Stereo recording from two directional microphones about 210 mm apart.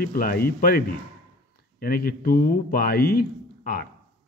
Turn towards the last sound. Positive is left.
turn(degrees=45)  # may be behind; listen again after turning